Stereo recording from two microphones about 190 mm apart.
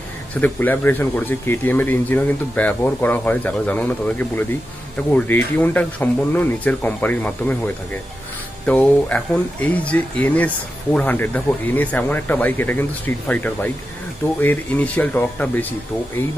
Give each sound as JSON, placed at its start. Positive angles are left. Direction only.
{"t": 0.4, "sound": "speech", "side_deg": 10}